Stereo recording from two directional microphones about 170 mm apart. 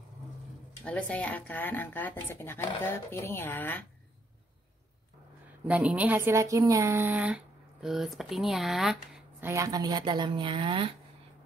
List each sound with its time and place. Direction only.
0.8 s speech: 10° left (ahead or behind)
5.7 s speech: 10° right (ahead or behind)
9.5 s speech: 20° right (ahead or behind)